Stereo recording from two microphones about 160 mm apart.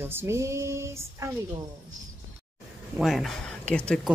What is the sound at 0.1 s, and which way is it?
Female singing, 15° right (ahead or behind).